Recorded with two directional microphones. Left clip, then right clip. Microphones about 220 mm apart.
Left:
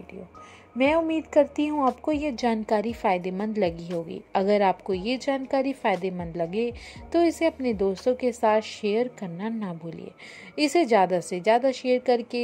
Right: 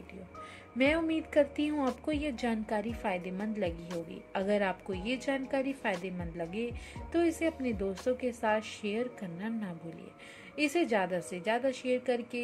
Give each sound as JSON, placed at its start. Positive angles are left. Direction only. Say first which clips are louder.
{"t": 0.7, "sound": "a woman's voice", "louder": "left 7 dB", "side_deg": 15}